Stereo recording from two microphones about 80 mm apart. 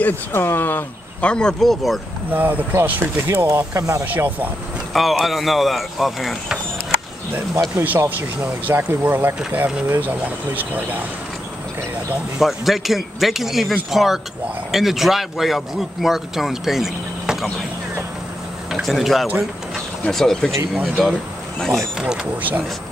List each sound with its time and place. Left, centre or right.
0.0 s speech: left
1.3 s a man's voice: centre
2.3 s speech: right
4.0 s speech: right
4.9 s a man's voice: centre
7.7 s speech: right
12.4 s a man's voice: centre
18.7 s speech: centre
19.7 s a sound: centre
20.8 s a man's voice: centre
21.9 s speech: centre
22.2 s speech: right